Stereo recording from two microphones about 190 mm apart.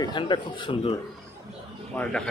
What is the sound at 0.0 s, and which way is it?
Speech, 25° left (ahead or behind).